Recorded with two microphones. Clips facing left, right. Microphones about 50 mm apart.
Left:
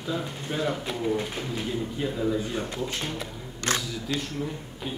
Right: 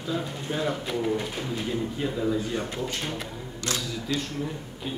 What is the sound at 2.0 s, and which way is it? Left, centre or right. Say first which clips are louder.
Speech: left 1 dB; centre.